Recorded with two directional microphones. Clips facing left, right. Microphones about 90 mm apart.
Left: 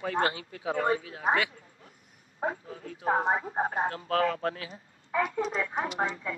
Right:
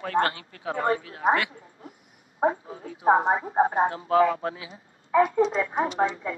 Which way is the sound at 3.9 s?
20° right (ahead or behind).